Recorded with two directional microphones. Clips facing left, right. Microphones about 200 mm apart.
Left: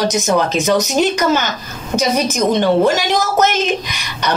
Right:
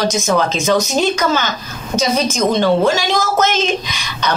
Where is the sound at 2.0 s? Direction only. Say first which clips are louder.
Even; 15° left (ahead or behind).